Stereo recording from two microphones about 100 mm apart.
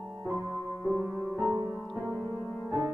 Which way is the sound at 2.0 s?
20° left (ahead or behind).